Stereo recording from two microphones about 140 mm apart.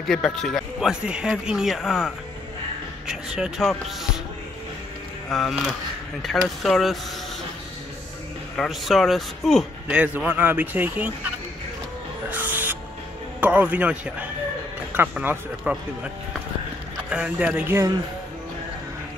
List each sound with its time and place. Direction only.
0.0 s speech: centre (ahead or behind)
5.3 s speech: centre (ahead or behind)
8.5 s speech: centre (ahead or behind)
9.8 s a man's voice: 10° right (ahead or behind)
12.3 s music: 15° right (ahead or behind)
13.4 s a man's voice: 10° right (ahead or behind)
17.1 s a man's voice: 10° right (ahead or behind)